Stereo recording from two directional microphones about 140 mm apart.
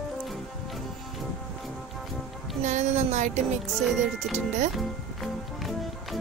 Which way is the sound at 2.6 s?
55° right (ahead or behind).